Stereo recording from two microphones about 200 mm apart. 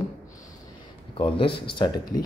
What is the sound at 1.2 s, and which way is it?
Speech, 25° left (ahead or behind).